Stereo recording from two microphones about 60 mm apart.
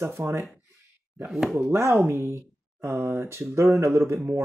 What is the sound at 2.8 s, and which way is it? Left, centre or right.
Speech, right.